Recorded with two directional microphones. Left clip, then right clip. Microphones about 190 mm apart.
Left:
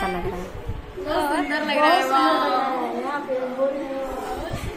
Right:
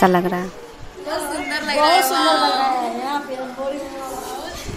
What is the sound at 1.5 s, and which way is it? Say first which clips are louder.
Chatter: right 2 dB; 30° left (ahead or behind).